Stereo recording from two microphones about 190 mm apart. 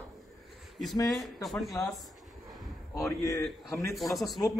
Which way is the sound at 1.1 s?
Centre (ahead or behind).